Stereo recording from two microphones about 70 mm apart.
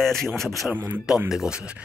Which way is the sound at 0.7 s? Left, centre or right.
Right.